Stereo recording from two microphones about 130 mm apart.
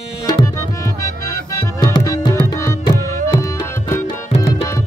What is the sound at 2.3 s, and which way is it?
Tabla, 20° left (ahead or behind).